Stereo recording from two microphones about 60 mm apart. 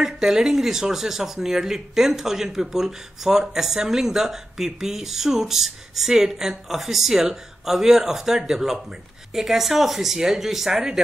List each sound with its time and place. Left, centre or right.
0.0 s speech: centre